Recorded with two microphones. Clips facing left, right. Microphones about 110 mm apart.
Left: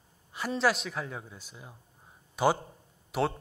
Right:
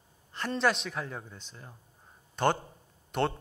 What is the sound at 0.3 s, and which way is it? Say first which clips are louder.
A man's voice: even; 5° left (ahead or behind).